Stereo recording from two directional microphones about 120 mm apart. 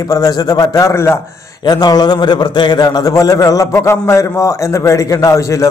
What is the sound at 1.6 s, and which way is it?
A man's voice, 35° left (ahead or behind).